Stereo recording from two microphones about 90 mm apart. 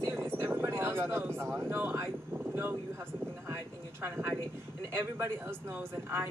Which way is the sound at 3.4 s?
25° right (ahead or behind).